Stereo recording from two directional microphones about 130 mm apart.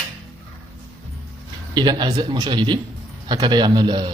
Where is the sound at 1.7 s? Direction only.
35° right (ahead or behind).